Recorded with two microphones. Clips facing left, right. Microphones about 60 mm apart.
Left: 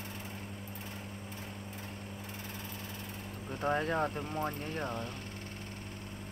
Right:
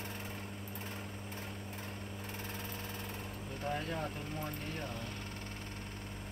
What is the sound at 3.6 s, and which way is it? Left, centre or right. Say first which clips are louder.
Speech: left 7 dB; left.